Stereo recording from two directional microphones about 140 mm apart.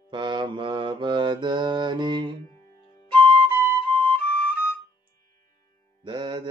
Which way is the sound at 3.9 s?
10° left (ahead or behind).